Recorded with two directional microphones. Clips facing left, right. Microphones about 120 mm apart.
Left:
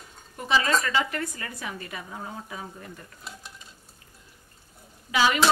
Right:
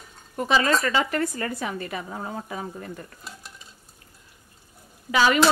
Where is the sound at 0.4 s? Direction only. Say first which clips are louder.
Right 3 dB; 50° right (ahead or behind).